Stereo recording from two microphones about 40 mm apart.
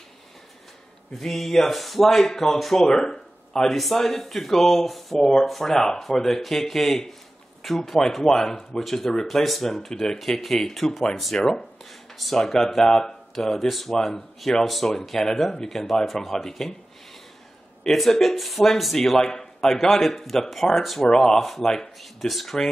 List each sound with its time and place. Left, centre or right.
1.2 s speech: centre
2.9 s a sound: centre
3.6 s speech: centre
8.0 s speech: centre
13.9 s speech: centre
14.4 s speech: centre
17.8 s speech: centre
21.1 s speech: centre
21.4 s speech: centre